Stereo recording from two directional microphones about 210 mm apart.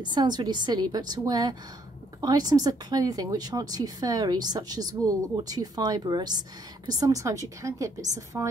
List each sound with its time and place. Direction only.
0.0 s a woman's voice: 20° right (ahead or behind)